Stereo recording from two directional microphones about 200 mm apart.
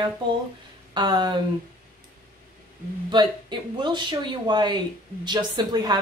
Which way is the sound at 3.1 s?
20° right (ahead or behind).